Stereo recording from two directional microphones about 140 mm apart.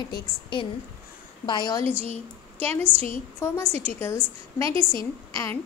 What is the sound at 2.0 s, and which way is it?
Speech, 45° right (ahead or behind).